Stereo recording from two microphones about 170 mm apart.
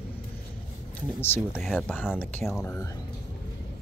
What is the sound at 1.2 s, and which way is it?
Speech, 15° left (ahead or behind).